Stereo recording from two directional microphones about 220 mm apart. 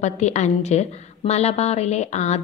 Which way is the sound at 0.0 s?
30° left (ahead or behind).